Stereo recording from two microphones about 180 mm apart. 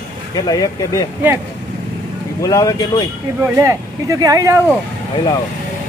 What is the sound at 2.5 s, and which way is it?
Speech, 20° left (ahead or behind).